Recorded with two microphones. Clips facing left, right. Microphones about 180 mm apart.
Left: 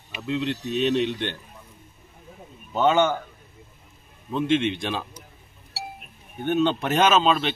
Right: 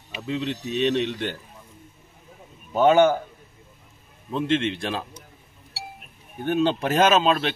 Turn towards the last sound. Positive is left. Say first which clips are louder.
# right 1 dB
turn(degrees=0)  # may be behind; listen again after turning